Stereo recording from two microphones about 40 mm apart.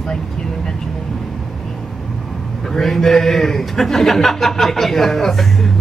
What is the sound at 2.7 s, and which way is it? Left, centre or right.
A man's voice, centre.